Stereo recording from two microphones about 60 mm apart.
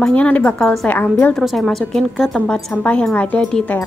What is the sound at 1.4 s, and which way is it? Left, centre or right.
Speech, centre.